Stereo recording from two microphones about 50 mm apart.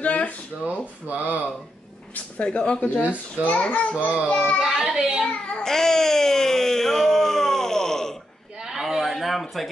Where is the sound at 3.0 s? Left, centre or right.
Right.